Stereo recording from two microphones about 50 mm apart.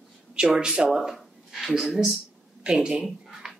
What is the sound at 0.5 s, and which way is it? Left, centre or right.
Speech, centre.